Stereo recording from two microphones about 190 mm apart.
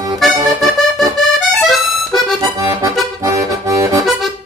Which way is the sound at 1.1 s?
Centre (ahead or behind).